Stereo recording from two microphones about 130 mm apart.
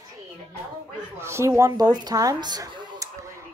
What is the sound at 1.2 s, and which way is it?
Speech, 20° right (ahead or behind).